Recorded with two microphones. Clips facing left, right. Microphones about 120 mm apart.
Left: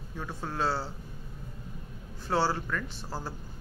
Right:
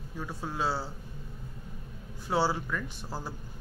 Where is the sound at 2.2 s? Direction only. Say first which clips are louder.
Even; 10° right (ahead or behind).